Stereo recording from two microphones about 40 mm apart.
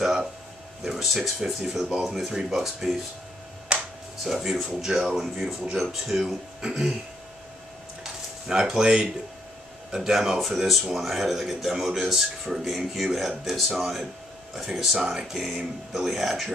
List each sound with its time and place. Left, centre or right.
0.0 s a sound: centre
0.8 s speech: centre
2.6 s speech: centre
4.2 s speech: centre
8.0 s a sound: centre
8.7 s speech: centre
10.7 s speech: centre